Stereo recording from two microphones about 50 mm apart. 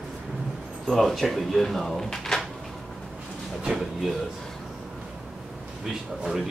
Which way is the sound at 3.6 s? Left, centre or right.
Centre.